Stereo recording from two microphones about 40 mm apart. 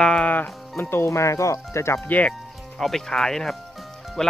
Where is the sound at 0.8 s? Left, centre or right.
Left.